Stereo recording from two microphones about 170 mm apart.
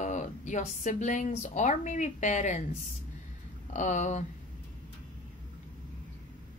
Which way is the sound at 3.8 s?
45° left (ahead or behind).